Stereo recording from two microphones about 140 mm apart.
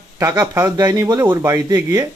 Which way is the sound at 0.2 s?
25° right (ahead or behind).